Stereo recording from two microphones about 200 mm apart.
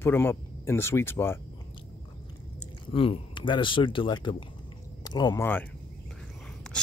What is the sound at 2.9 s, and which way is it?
Speech, 25° left (ahead or behind).